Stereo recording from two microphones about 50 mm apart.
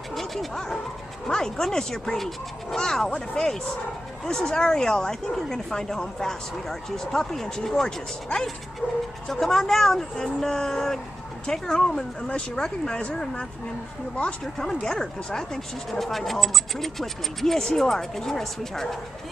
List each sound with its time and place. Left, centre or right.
0.1 s dog: centre
1.2 s speech: centre
8.8 s speech: right
9.3 s speech: centre